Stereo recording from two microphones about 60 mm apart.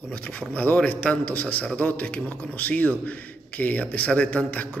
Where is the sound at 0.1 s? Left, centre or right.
Left.